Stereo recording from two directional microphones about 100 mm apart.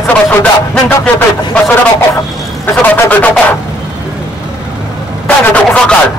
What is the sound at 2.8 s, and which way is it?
Speech, 20° left (ahead or behind).